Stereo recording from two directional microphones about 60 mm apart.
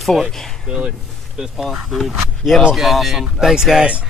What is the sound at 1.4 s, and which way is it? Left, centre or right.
Speech, centre.